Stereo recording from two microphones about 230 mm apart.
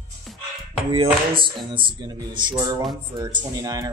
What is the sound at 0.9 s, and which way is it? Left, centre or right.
Speech, right.